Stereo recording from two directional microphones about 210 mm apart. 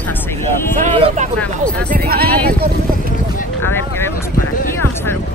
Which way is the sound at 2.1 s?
45° right (ahead or behind).